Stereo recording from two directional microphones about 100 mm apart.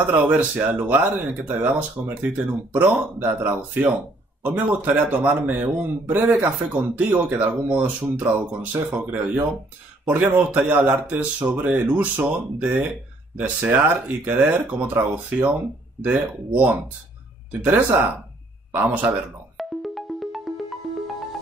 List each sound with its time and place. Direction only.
0.1 s a man's voice: 15° right (ahead or behind)
19.0 s music: centre (ahead or behind)